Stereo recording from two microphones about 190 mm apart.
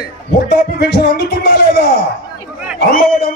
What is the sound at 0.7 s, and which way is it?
Speech, 60° left (ahead or behind).